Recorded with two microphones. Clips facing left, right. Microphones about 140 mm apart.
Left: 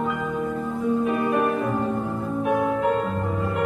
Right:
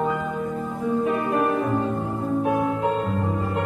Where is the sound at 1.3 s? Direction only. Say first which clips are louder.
Even; 25° right (ahead or behind).